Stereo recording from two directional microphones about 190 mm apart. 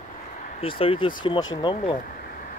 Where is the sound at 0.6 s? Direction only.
30° left (ahead or behind).